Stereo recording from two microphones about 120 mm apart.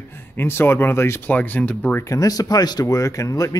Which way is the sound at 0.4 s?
20° left (ahead or behind).